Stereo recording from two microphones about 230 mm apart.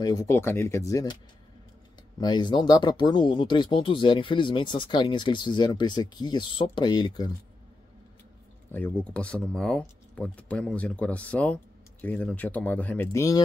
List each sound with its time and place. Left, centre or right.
0.0 s speech: centre
2.1 s speech: centre
8.7 s speech: centre